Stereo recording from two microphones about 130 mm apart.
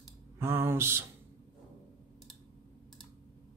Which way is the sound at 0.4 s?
15° right (ahead or behind).